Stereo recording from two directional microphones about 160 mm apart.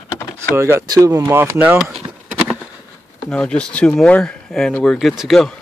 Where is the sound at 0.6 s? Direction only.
15° right (ahead or behind).